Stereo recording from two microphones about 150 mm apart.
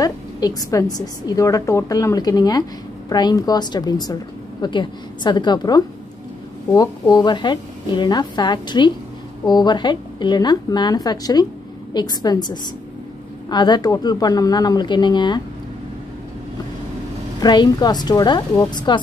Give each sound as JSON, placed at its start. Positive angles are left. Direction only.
{"t": 0.0, "sound": "a woman's voice", "side_deg": 25}
{"t": 17.4, "sound": "a woman's voice", "side_deg": 30}